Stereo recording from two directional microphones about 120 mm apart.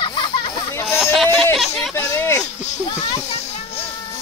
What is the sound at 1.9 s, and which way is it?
Speech, 25° left (ahead or behind).